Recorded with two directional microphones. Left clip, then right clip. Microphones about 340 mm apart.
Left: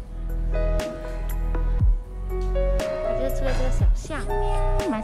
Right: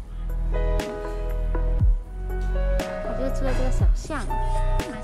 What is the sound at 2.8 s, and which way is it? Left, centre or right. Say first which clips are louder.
Music: left 2 dB; centre.